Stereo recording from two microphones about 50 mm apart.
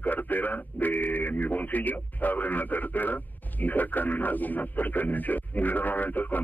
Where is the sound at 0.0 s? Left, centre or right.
Left.